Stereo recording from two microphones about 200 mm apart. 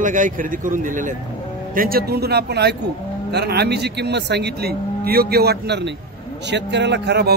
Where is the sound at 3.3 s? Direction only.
55° right (ahead or behind).